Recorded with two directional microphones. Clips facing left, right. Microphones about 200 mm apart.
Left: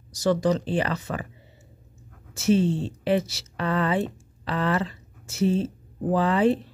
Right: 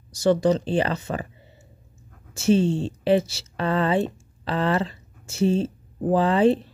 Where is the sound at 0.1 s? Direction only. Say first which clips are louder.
Right 3 dB; 30° right (ahead or behind).